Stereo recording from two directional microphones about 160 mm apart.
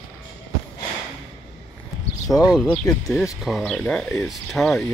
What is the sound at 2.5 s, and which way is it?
Speech, 5° left (ahead or behind).